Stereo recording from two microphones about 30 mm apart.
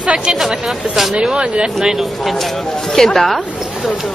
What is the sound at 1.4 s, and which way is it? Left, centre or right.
Speech, right.